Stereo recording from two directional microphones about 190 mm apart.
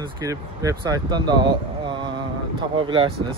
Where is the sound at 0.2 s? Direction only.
20° right (ahead or behind).